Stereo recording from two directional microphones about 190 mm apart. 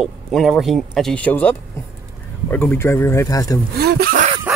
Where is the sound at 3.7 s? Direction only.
55° right (ahead or behind).